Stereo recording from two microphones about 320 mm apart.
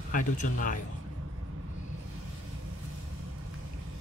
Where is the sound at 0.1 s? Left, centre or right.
Left.